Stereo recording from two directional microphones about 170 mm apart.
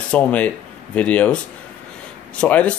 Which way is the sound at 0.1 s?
10° left (ahead or behind).